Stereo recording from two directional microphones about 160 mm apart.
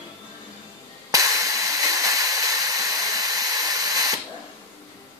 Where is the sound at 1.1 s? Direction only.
20° right (ahead or behind).